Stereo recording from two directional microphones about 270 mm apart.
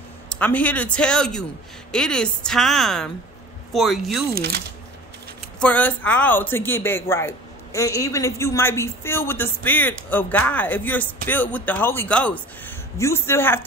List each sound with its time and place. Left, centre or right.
0.3 s a woman's voice: centre
4.4 s speech: right
5.6 s speech: centre